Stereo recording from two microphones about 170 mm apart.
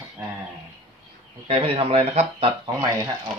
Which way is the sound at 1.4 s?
35° right (ahead or behind).